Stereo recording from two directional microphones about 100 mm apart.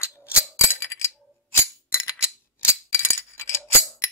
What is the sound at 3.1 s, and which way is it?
Music, 25° left (ahead or behind).